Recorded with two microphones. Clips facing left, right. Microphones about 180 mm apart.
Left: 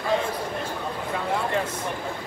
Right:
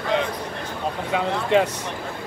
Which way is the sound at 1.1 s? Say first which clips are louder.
Right 6 dB; 75° right (ahead or behind).